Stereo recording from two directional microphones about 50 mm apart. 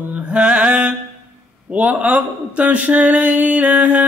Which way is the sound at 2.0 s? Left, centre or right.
Right.